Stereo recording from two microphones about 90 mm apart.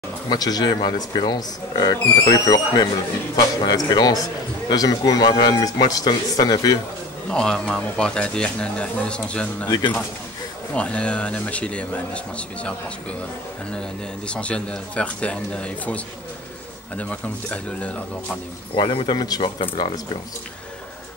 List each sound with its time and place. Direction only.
0.3 s speech: 45° left (ahead or behind)
7.2 s speech: 10° left (ahead or behind)
9.7 s speech: 50° left (ahead or behind)
10.7 s speech: 15° left (ahead or behind)
18.8 s speech: 60° left (ahead or behind)